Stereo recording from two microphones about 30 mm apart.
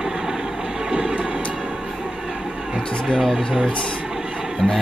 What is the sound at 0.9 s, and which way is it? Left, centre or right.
Vehicle, right.